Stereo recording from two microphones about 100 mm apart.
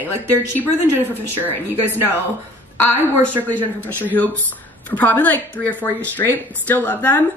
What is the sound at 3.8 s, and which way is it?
A woman's voice, 15° left (ahead or behind).